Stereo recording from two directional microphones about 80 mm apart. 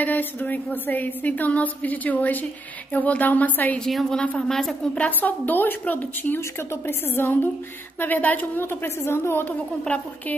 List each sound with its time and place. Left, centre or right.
0.0 s a woman's voice: left
3.8 s a woman's voice: centre
4.9 s a woman's voice: centre
9.8 s a woman's voice: centre